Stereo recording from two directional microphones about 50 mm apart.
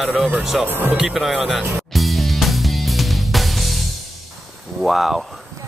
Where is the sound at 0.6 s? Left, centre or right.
Right.